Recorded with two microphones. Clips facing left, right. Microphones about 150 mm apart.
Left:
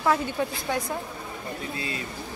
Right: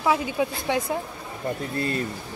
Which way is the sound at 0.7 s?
20° right (ahead or behind).